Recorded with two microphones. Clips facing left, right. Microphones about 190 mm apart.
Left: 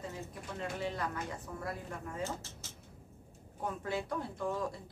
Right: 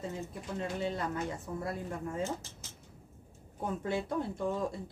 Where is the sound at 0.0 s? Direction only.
25° right (ahead or behind).